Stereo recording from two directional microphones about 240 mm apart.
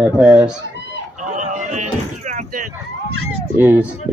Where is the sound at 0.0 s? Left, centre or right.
Centre.